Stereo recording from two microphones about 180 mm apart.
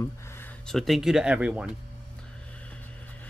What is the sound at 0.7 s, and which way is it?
Speech, centre (ahead or behind).